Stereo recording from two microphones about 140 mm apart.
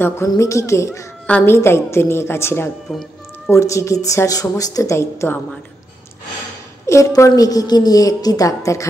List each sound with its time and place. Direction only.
0.3 s a woman's voice: 20° left (ahead or behind)
6.9 s a woman's voice: 20° left (ahead or behind)